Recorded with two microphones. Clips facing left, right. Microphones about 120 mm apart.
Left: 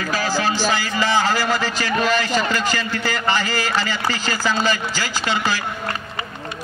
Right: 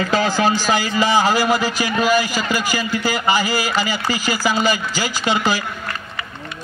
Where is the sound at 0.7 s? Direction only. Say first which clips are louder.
Right 3 dB; 15° right (ahead or behind).